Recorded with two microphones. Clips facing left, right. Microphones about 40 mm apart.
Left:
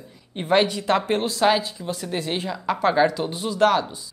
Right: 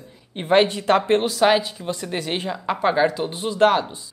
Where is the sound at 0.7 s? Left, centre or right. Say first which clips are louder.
Right 4 dB; right.